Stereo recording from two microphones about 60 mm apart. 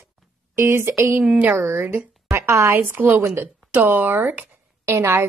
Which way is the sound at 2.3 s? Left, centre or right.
Right.